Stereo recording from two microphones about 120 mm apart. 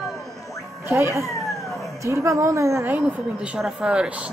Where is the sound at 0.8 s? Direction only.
25° right (ahead or behind).